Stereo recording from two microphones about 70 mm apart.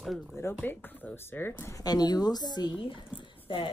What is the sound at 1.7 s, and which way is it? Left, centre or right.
Speech, left.